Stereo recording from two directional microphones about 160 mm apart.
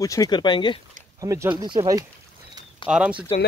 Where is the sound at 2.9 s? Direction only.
5° right (ahead or behind).